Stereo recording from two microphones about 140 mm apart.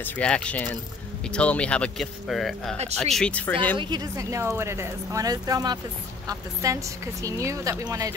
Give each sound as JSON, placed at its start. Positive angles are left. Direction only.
{"t": 0.0, "sound": "speech", "side_deg": 10}
{"t": 3.7, "sound": "speech", "side_deg": -30}